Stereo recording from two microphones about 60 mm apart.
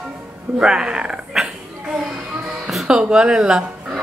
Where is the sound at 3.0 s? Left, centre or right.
Centre.